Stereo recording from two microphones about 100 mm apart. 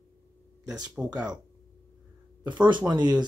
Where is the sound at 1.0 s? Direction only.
15° right (ahead or behind).